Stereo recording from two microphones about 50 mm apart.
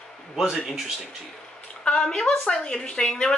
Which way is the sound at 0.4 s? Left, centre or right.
Centre.